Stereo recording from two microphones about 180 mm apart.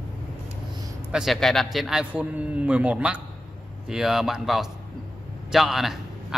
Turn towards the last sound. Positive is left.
turn(degrees=0)  # may be behind; listen again after turning